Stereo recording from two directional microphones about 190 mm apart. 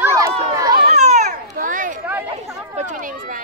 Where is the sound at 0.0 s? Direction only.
15° right (ahead or behind).